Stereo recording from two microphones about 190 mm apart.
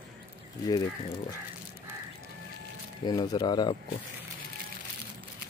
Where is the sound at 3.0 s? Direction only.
20° left (ahead or behind).